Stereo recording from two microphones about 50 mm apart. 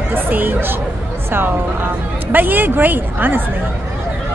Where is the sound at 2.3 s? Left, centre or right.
Right.